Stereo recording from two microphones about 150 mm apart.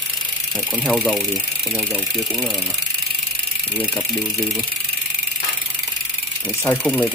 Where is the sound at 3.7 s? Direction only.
10° left (ahead or behind).